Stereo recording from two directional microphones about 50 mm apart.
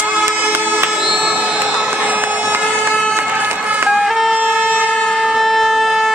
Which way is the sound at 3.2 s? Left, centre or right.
Right.